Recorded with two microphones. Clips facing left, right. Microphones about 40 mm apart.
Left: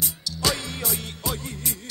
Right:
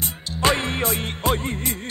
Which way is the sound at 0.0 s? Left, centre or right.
Right.